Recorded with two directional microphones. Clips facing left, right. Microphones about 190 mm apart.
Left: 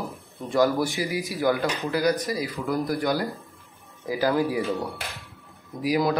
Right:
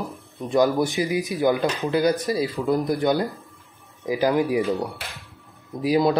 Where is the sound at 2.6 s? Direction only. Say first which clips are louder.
Right 3 dB; 20° right (ahead or behind).